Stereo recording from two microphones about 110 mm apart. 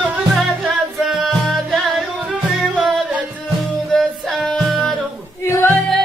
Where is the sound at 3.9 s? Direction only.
5° left (ahead or behind).